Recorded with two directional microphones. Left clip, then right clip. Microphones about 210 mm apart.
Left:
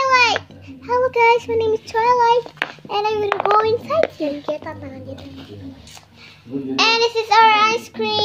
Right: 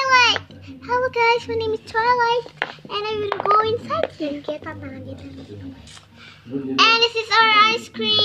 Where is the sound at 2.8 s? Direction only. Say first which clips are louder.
Left 6 dB; 15° right (ahead or behind).